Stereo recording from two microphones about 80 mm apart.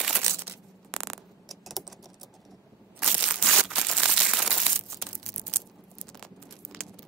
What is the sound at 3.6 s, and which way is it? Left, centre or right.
Crumpling, centre.